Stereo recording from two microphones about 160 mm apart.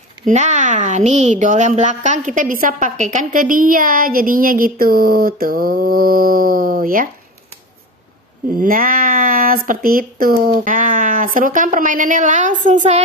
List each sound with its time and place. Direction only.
0.3 s a woman's voice: 50° right (ahead or behind)
8.5 s a woman's voice: 60° right (ahead or behind)